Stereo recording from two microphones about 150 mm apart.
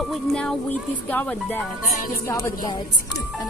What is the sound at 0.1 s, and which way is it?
Speech, centre (ahead or behind).